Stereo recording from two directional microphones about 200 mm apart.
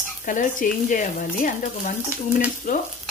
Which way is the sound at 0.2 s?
40° left (ahead or behind).